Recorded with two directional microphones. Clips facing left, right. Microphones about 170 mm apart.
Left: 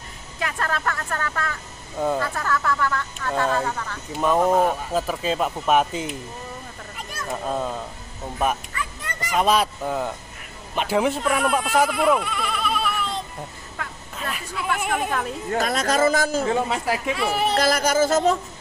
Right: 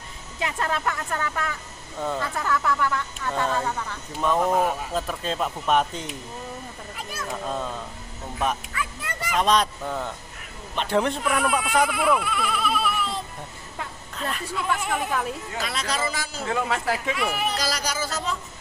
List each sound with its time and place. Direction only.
0.4 s speech: 20° right (ahead or behind)
3.2 s speech: centre (ahead or behind)
7.0 s cat: centre (ahead or behind)
7.4 s a woman's voice: 10° left (ahead or behind)
8.7 s bow-wow: 5° right (ahead or behind)
9.4 s a woman's voice: 5° left (ahead or behind)
15.5 s a man's voice: 45° left (ahead or behind)
16.5 s a woman's voice: 20° left (ahead or behind)
17.2 s speech: 30° left (ahead or behind)
17.6 s a man's voice: 55° left (ahead or behind)